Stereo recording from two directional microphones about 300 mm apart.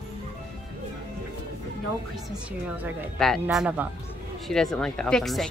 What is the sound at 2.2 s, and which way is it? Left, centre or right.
A woman's voice, centre.